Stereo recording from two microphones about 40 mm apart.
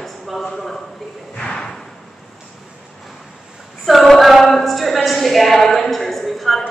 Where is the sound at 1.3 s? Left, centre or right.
Centre.